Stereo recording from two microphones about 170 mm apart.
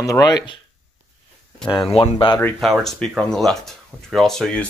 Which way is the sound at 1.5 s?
Centre (ahead or behind).